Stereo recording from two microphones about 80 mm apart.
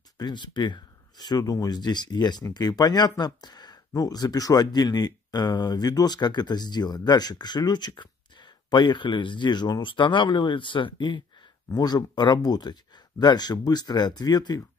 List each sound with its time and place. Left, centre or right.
0.2 s speech: left
11.7 s speech: left